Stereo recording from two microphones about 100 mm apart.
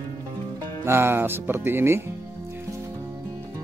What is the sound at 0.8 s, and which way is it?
A man's voice, 25° right (ahead or behind).